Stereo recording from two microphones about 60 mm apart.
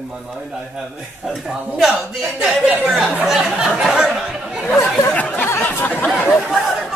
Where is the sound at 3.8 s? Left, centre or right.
Centre.